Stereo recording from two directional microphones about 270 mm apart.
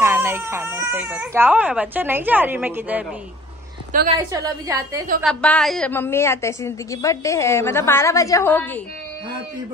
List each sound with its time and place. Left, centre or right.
0.0 s speech: centre
3.9 s a woman's voice: right
4.3 s speech: centre
5.2 s a woman's voice: centre